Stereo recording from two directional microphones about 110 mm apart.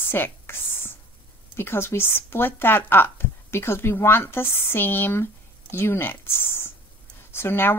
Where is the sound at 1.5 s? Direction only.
20° left (ahead or behind).